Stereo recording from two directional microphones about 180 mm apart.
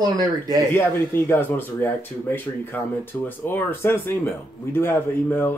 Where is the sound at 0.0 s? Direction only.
20° right (ahead or behind).